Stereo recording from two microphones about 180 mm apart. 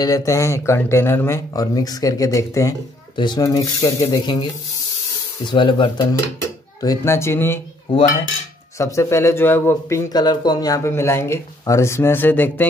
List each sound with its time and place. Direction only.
0.0 s speech: 20° left (ahead or behind)
5.5 s speech: 25° left (ahead or behind)
8.7 s speech: 15° left (ahead or behind)